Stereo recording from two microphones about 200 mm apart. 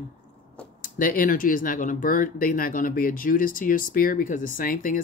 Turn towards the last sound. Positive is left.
turn(degrees=45)  # may be behind; listen again after turning